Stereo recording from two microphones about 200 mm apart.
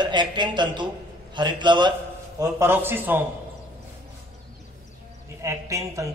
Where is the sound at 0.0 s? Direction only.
25° right (ahead or behind).